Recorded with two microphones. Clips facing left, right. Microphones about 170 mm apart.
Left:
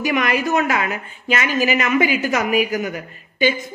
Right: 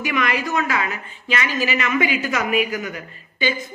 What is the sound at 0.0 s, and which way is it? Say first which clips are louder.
A woman's voice: left 3 dB; 45° left (ahead or behind).